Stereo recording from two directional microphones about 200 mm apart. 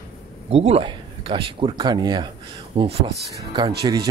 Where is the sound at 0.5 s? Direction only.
30° right (ahead or behind).